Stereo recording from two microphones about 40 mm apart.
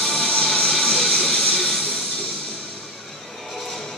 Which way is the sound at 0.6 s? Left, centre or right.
Centre.